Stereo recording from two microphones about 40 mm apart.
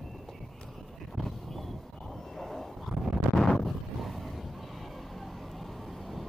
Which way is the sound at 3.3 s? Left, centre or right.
Centre.